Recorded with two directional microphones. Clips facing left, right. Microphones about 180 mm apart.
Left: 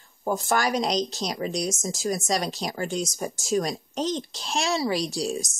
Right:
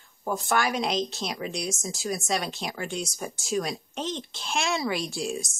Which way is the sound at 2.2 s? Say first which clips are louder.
Left 3 dB; 40° left (ahead or behind).